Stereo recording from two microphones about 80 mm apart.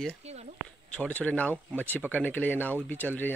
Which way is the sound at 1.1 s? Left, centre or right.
Centre.